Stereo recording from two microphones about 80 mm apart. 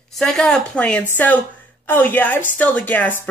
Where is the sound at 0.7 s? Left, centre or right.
Centre.